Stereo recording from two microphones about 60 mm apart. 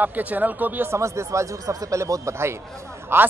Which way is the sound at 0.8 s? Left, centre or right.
Right.